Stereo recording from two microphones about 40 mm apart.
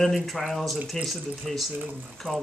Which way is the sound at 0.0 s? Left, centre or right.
Centre.